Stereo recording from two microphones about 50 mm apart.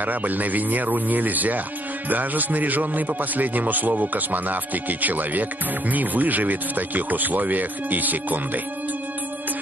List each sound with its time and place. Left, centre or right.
0.0 s speech: right